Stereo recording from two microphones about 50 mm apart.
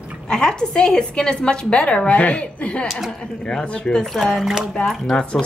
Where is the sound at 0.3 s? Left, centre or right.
Centre.